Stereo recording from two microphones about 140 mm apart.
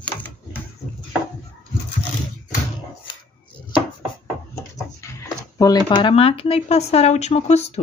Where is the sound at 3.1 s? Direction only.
35° left (ahead or behind).